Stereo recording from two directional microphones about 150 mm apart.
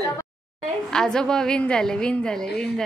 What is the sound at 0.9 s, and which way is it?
A woman's voice, 5° left (ahead or behind).